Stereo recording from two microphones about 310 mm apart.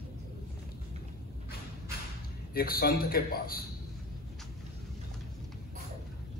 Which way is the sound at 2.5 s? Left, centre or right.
Left.